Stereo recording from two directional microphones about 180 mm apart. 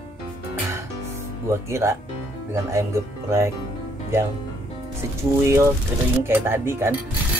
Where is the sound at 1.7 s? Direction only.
15° right (ahead or behind).